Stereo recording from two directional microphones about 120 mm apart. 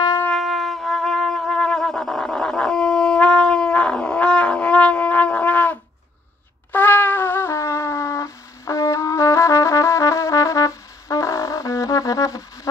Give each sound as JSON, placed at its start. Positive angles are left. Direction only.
{"t": 0.3, "sound": "music", "side_deg": 0}
{"t": 6.7, "sound": "shofar", "side_deg": 15}